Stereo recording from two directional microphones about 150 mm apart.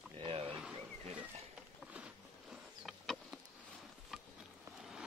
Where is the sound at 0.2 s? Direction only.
40° right (ahead or behind).